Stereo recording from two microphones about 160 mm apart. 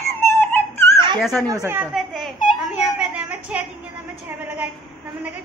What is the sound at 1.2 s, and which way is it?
Speech, centre (ahead or behind).